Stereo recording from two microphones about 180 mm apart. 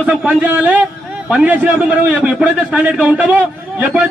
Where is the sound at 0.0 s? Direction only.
5° right (ahead or behind).